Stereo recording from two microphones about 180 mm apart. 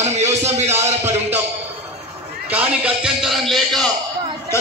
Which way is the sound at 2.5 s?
5° right (ahead or behind).